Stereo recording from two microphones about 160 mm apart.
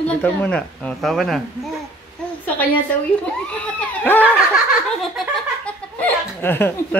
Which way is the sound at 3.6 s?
10° left (ahead or behind).